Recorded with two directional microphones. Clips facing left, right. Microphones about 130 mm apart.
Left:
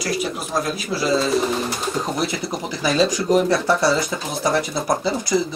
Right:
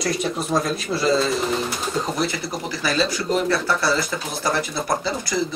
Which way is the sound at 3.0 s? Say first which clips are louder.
Left 4 dB; 20° left (ahead or behind).